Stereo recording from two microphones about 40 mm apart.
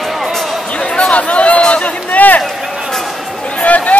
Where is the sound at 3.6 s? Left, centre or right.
Left.